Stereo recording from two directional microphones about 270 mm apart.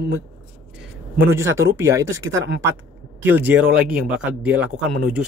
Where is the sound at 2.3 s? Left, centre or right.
Right.